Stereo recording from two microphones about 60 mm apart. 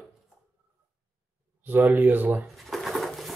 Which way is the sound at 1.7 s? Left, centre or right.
Right.